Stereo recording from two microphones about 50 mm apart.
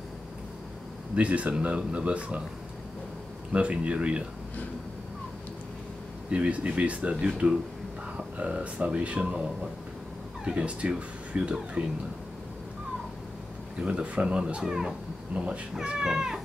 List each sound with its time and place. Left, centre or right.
1.1 s speech: right
3.5 s speech: right
6.3 s speech: right
10.4 s speech: right
13.7 s speech: right
15.3 s speech: right